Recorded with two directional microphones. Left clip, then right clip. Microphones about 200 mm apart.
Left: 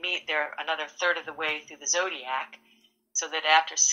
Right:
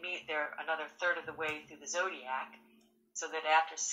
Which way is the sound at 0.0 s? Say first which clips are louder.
Left 9 dB; 40° left (ahead or behind).